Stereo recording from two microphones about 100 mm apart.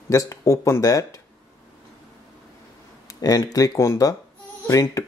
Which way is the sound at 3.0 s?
40° left (ahead or behind).